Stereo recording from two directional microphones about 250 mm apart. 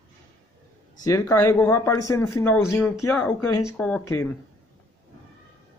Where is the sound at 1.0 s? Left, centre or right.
Centre.